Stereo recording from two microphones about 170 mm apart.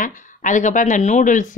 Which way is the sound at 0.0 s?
50° left (ahead or behind).